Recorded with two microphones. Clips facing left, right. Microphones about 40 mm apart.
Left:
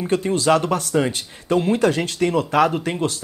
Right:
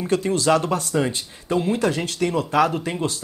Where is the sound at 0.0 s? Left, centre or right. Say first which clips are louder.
Left 1 dB; left.